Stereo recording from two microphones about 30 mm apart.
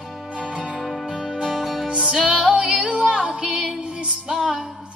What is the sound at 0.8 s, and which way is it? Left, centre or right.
Music, centre.